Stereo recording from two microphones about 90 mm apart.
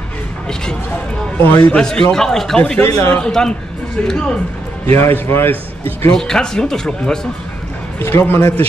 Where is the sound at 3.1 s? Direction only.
20° left (ahead or behind).